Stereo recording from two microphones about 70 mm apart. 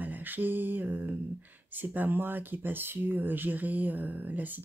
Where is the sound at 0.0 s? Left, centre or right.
Right.